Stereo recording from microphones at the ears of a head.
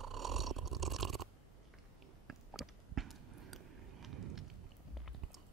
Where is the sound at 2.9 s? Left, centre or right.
Right.